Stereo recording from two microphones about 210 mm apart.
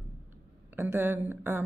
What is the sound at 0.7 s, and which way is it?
Speech, 10° right (ahead or behind).